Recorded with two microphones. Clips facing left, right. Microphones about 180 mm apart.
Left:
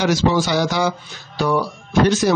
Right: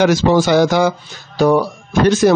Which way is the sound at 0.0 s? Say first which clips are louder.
Right 5 dB; 55° right (ahead or behind).